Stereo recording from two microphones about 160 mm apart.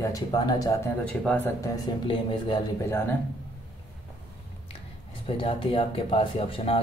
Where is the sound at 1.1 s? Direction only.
10° left (ahead or behind).